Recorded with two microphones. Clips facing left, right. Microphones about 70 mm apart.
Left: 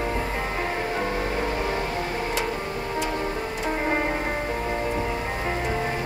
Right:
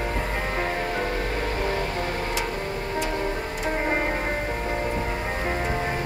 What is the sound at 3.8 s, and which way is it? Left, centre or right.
Music, centre.